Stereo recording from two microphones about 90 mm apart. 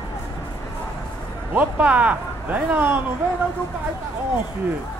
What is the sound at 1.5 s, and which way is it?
Speech, 15° right (ahead or behind).